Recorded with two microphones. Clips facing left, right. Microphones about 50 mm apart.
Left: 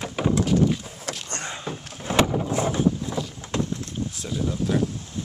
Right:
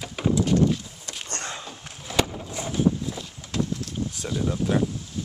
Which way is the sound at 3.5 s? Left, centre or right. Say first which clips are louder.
Left 1 dB; left.